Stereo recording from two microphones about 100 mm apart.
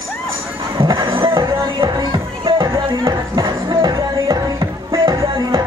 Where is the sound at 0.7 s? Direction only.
55° right (ahead or behind).